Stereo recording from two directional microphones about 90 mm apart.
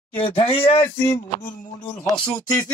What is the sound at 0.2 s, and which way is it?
Speech, 85° left.